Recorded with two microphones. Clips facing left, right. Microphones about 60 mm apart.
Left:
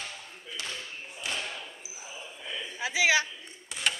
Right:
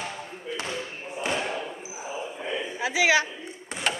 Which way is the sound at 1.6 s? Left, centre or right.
Right.